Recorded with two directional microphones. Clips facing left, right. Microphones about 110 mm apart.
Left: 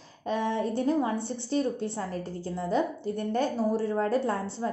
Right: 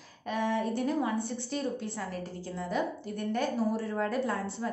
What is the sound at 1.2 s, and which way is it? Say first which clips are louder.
Speech: left 5 dB; 30° left (ahead or behind).